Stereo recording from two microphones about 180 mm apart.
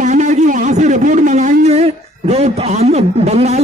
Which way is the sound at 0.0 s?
40° right (ahead or behind).